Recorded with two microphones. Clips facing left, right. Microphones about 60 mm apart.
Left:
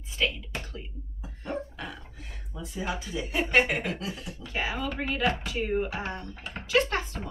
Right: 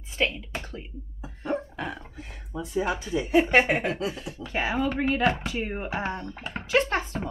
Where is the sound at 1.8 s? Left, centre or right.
Right.